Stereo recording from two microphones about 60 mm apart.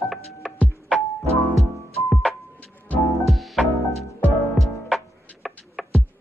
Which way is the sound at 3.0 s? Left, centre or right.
Left.